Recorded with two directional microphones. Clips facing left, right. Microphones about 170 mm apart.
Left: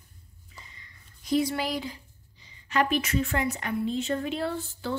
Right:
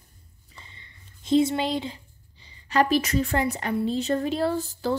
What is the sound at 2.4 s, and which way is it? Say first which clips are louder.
A woman's voice: right 4 dB; 35° right (ahead or behind).